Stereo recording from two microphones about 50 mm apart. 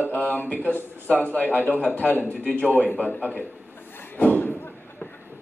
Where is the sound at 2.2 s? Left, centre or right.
Right.